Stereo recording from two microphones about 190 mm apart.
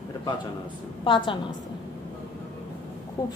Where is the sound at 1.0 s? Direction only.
25° left (ahead or behind).